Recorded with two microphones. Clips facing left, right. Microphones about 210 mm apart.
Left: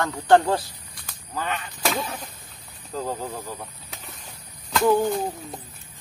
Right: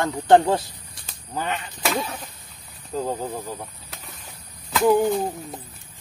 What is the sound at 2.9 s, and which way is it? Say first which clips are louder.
Speech: right 3 dB; 15° right (ahead or behind).